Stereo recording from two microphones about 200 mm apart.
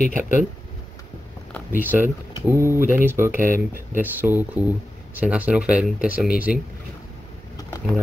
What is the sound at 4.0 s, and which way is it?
Speech, 10° right (ahead or behind).